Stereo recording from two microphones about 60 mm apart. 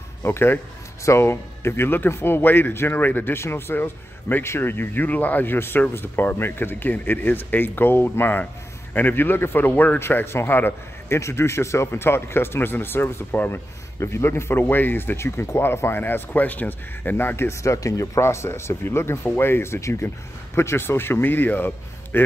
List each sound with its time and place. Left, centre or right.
0.2 s speech: left
3.3 s speech: left
9.9 s speech: left
11.1 s speech: left
13.9 s speech: left
16.0 s speech: left
17.6 s speech: left